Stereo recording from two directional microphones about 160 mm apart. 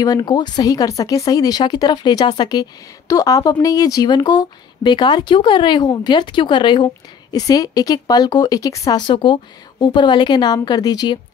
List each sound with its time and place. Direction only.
0.0 s speech: 25° left (ahead or behind)